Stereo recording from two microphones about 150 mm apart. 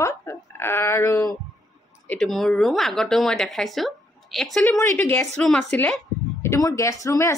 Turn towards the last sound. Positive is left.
turn(degrees=20)  # may be behind; listen again after turning